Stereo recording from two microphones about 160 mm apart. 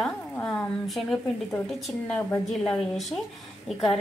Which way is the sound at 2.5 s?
5° left (ahead or behind).